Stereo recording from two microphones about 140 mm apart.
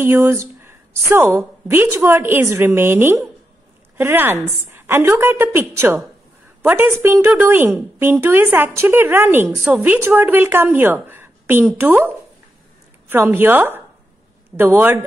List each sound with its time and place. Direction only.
0.0 s a woman's voice: 15° right (ahead or behind)
13.1 s a woman's voice: 15° right (ahead or behind)